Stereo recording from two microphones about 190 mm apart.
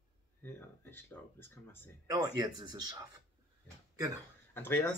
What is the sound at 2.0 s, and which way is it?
Speech, 20° right (ahead or behind).